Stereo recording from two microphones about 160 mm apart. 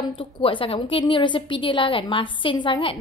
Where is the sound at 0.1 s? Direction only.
30° left (ahead or behind).